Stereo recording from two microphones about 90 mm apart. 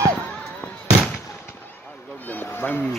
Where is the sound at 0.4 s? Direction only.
10° left (ahead or behind).